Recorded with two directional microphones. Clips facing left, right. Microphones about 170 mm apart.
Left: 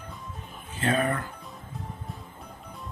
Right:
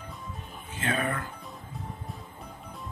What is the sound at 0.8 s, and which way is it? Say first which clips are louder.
Speech: left 4 dB; 40° left (ahead or behind).